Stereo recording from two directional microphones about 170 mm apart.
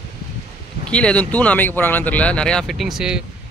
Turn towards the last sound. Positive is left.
turn(degrees=-5)  # may be behind; listen again after turning